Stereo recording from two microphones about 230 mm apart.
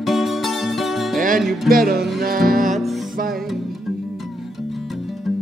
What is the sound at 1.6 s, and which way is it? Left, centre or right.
Music, right.